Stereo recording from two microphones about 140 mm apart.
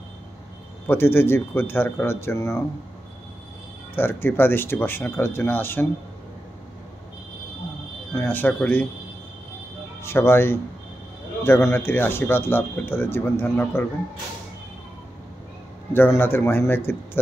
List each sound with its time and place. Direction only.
0.8 s speech: 15° left (ahead or behind)
3.9 s speech: 15° left (ahead or behind)
8.1 s speech: 15° left (ahead or behind)
10.0 s speech: 15° left (ahead or behind)
15.9 s speech: 15° left (ahead or behind)